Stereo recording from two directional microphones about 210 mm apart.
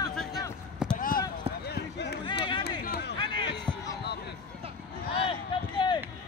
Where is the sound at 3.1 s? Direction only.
20° left (ahead or behind).